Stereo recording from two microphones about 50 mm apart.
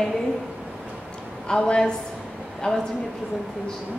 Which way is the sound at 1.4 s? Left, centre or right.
Centre.